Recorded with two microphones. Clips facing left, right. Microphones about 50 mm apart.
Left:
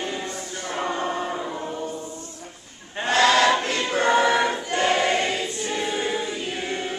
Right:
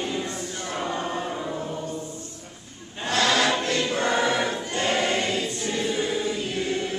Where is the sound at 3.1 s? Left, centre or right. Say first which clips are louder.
Left 4 dB; left.